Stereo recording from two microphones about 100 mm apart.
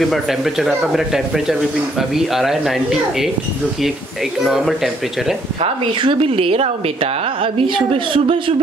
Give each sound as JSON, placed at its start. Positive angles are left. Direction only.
{"t": 0.0, "sound": "speech", "side_deg": 0}
{"t": 4.5, "sound": "speech", "side_deg": 0}
{"t": 5.6, "sound": "speech", "side_deg": -65}
{"t": 7.5, "sound": "a woman's voice", "side_deg": -65}